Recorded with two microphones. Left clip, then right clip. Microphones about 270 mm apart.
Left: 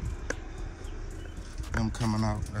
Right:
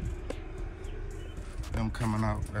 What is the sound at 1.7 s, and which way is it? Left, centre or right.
Speech, centre.